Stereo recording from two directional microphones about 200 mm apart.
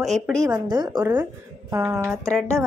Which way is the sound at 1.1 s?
10° right (ahead or behind).